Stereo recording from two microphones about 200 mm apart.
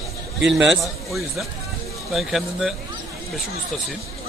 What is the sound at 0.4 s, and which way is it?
Speech, 60° right (ahead or behind).